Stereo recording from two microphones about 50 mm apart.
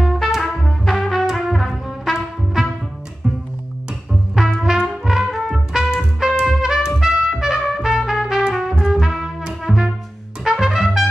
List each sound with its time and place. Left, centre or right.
0.0 s trumpet: centre
1.2 s brass instrument: centre
2.1 s trumpet: centre
4.4 s music: centre
7.0 s trumpet: centre
9.4 s music: centre
10.4 s trumpet: centre